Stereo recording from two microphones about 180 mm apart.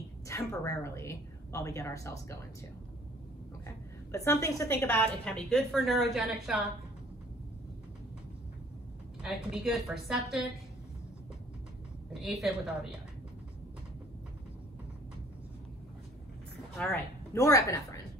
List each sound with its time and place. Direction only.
0.3 s a woman's voice: 15° left (ahead or behind)
3.6 s a woman's voice: 15° left (ahead or behind); by 6.6 s centre (ahead or behind)
9.2 s a woman's voice: centre (ahead or behind)
12.1 s a woman's voice: centre (ahead or behind)
16.7 s a woman's voice: 5° left (ahead or behind)
17.3 s a woman's voice: 15° left (ahead or behind)